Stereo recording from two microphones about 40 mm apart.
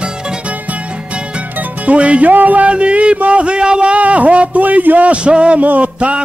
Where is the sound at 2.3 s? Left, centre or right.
Right.